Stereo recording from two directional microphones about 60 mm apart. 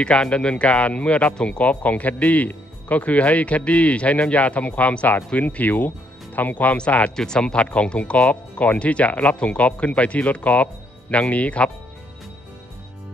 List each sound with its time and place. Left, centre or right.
0.0 s a man's voice: centre
7.2 s a man's voice: centre